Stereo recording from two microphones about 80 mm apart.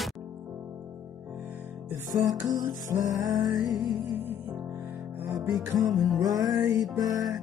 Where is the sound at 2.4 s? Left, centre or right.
Right.